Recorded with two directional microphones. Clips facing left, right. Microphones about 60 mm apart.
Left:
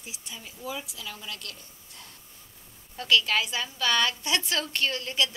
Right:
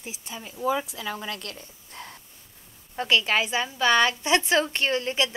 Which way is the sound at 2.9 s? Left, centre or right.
Right.